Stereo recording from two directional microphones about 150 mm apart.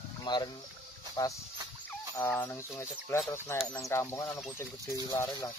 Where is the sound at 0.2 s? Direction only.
30° left (ahead or behind).